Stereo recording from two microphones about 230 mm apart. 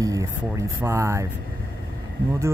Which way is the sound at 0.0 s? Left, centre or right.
Centre.